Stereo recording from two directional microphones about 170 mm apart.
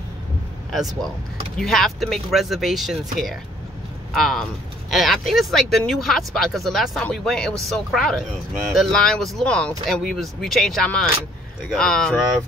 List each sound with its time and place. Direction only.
0.7 s speech: centre (ahead or behind)